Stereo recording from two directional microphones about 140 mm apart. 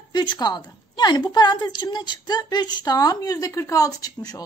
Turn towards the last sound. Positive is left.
turn(degrees=25)  # may be behind; listen again after turning